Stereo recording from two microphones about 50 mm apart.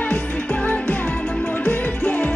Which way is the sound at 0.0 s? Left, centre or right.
Left.